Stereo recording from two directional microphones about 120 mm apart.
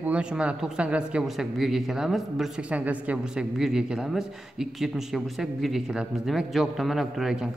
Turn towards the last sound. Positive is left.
turn(degrees=0)  # may be behind; listen again after turning